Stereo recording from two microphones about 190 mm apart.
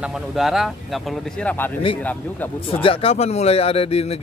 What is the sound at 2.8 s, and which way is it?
Speech, 30° left (ahead or behind).